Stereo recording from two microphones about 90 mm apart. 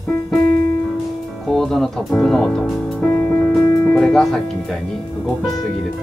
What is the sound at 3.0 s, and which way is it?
Music, 15° left (ahead or behind).